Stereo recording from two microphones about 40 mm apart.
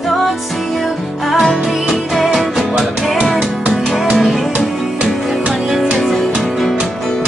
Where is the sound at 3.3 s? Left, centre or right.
Right.